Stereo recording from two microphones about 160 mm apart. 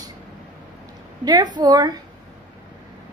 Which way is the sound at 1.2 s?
25° right (ahead or behind).